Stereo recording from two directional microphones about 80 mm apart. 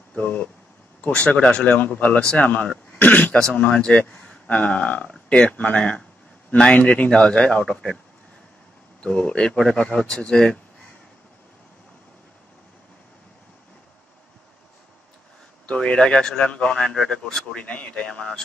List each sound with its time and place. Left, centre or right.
0.1 s speech: centre
4.1 s a sound: centre
5.1 s speech: centre
9.0 s speech: centre
15.6 s speech: centre